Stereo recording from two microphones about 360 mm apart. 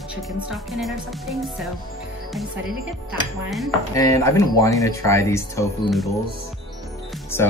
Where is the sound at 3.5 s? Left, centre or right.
Centre.